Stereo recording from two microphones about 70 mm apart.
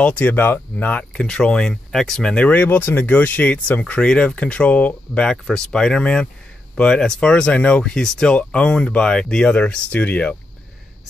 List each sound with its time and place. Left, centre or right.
0.0 s speech: centre
1.1 s speech: centre